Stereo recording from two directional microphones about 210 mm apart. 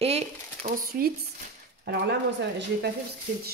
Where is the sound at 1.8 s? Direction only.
55° right (ahead or behind).